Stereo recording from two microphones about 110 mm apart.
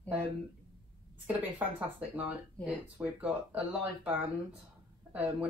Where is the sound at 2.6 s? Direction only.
10° right (ahead or behind).